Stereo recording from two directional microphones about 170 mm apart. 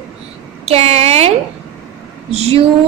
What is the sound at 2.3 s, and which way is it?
Speech, 40° right (ahead or behind).